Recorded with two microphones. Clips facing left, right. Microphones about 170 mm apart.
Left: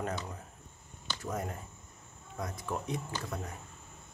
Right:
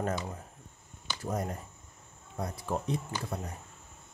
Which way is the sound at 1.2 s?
35° right (ahead or behind).